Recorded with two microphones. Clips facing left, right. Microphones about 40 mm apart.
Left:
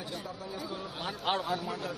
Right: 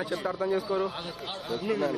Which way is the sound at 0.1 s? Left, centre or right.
Right.